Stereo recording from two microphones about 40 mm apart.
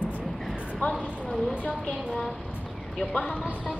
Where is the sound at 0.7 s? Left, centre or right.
Left.